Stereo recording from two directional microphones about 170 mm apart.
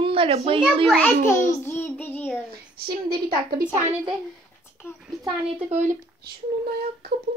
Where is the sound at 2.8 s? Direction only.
65° right (ahead or behind).